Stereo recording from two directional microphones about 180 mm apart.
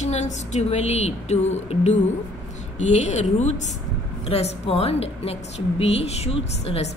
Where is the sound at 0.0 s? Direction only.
40° left (ahead or behind).